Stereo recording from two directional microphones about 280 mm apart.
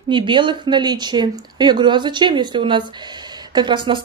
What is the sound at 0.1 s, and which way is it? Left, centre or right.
A woman's voice, centre.